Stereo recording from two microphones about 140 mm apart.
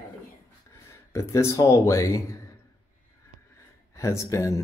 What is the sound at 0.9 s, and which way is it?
Speech, 20° left (ahead or behind).